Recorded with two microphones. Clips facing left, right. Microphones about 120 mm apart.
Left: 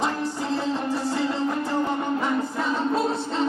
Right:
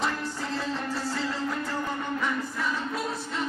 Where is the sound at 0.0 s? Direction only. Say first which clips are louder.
Left 4 dB; 20° left (ahead or behind).